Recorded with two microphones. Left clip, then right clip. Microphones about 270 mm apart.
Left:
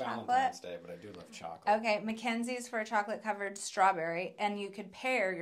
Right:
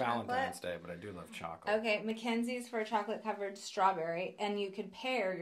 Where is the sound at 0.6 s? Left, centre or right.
Right.